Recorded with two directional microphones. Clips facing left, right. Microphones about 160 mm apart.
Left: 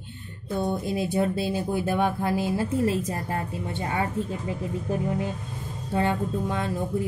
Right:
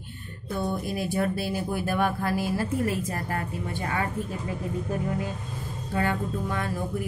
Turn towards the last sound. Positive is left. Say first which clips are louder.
# left 2 dB
turn(degrees=20)  # may be behind; listen again after turning